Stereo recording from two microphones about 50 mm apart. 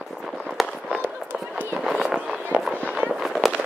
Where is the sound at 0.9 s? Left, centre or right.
Right.